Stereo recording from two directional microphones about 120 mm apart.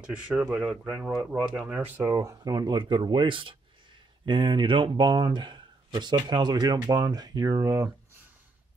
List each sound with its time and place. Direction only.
0.0 s speech: 10° right (ahead or behind)
2.1 s speech: 30° right (ahead or behind)